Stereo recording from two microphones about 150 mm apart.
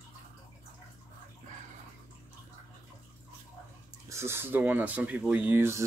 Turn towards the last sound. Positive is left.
turn(degrees=-15)  # may be behind; listen again after turning